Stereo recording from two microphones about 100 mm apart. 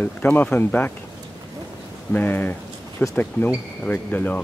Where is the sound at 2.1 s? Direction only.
20° left (ahead or behind).